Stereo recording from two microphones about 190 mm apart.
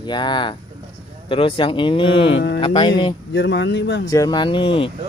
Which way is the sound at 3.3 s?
70° left (ahead or behind).